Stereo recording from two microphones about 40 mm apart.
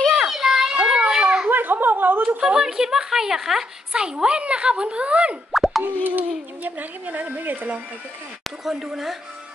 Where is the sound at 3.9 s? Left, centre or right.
Centre.